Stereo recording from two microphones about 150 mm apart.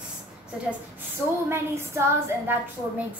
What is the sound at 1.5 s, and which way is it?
Child singing, 15° right (ahead or behind).